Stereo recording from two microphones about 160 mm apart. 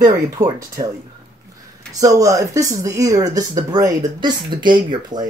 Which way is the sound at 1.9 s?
20° right (ahead or behind).